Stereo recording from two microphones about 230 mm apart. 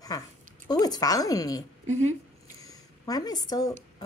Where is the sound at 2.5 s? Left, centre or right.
Centre.